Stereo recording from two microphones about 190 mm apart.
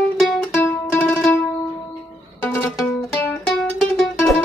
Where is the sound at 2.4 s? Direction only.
10° left (ahead or behind).